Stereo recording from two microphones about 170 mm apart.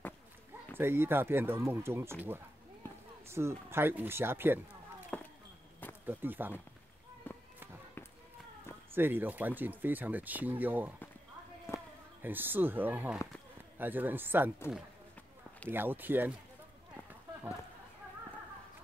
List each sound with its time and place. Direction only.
0.7 s speech: 15° right (ahead or behind)
5.1 s a sound: 10° left (ahead or behind)
6.0 s speech: 10° right (ahead or behind)
7.3 s fireworks: 10° left (ahead or behind)
8.9 s speech: 10° right (ahead or behind)
11.7 s a sound: 15° left (ahead or behind)
12.2 s speech: 10° right (ahead or behind)
15.7 s speech: 10° right (ahead or behind)